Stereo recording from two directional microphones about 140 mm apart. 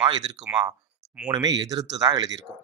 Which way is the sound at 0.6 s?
10° right (ahead or behind).